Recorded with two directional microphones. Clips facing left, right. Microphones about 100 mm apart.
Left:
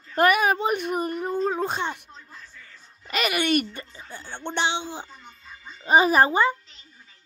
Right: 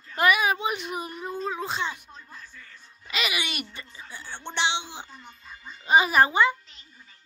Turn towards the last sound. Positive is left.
turn(degrees=40)  # may be behind; listen again after turning